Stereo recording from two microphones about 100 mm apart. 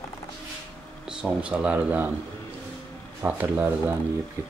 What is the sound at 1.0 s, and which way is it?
Speech, 10° right (ahead or behind).